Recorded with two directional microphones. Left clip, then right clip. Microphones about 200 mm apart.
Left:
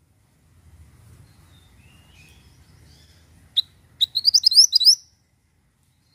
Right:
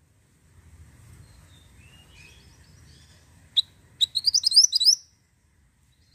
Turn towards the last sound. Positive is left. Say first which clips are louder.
# left 4 dB
turn(degrees=0)  # may be behind; listen again after turning